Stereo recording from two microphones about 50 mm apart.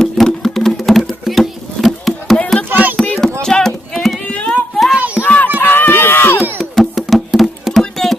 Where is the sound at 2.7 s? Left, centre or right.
Right.